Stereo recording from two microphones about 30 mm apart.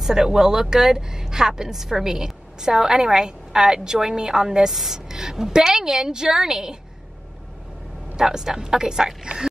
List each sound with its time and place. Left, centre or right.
0.0 s a woman's voice: centre
8.2 s a woman's voice: centre